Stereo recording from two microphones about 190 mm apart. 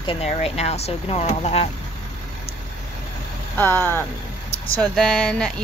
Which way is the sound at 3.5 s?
10° left (ahead or behind).